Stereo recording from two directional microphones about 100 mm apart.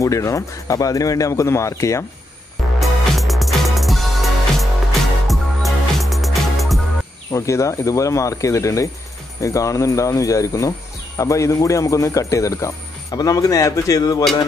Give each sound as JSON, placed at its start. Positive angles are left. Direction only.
{"t": 0.0, "sound": "speech", "side_deg": 35}
{"t": 2.8, "sound": "music", "side_deg": 0}
{"t": 7.3, "sound": "speech", "side_deg": 30}